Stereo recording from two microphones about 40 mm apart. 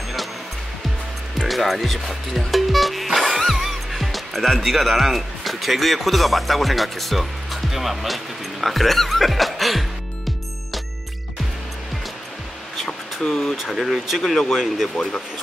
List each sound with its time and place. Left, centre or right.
1.5 s speech: centre
12.7 s a sound: centre
13.6 s speech: centre